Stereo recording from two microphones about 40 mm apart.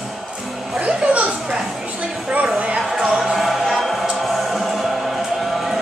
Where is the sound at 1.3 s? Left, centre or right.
Centre.